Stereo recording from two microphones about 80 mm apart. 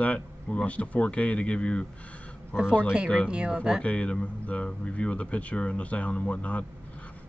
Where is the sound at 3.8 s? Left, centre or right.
Centre.